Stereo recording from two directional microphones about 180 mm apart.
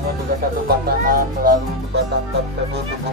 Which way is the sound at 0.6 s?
55° right (ahead or behind).